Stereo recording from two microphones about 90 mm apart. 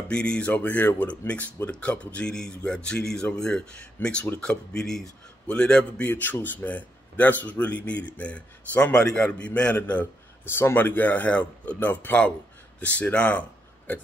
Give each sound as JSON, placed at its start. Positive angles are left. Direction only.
{"t": 0.1, "sound": "a man's voice", "side_deg": 10}